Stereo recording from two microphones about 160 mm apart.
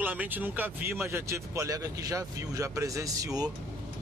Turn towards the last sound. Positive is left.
turn(degrees=-20)  # may be behind; listen again after turning